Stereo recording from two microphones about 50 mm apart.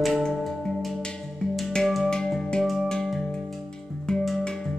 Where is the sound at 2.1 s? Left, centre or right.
Centre.